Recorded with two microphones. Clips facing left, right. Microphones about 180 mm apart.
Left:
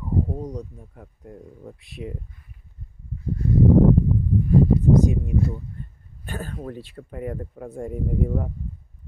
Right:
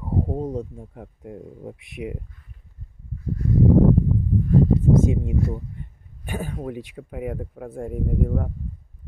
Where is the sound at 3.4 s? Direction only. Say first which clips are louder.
Left 1 dB; 25° left (ahead or behind).